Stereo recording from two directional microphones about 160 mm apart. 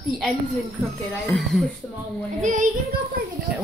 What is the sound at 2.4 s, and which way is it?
Speech, 50° right (ahead or behind).